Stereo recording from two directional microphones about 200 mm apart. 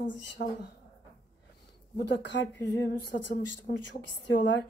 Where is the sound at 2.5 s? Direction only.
15° left (ahead or behind).